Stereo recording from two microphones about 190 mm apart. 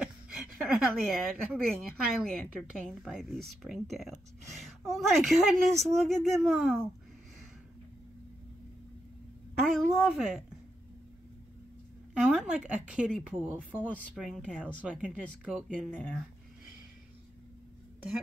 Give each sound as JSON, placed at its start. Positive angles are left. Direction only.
{"t": 0.0, "sound": "speech", "side_deg": 0}
{"t": 9.7, "sound": "speech", "side_deg": 0}
{"t": 12.1, "sound": "speech", "side_deg": -5}